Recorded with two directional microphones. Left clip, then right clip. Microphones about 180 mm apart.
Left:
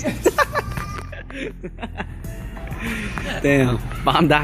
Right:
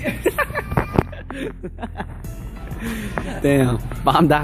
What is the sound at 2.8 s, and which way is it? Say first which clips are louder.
Speech: even; 20° right (ahead or behind).